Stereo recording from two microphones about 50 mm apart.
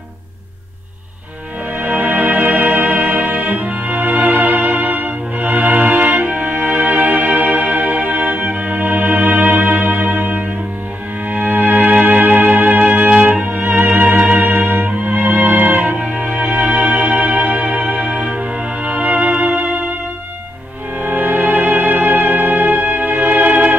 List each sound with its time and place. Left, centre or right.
1.8 s music: right
21.0 s music: right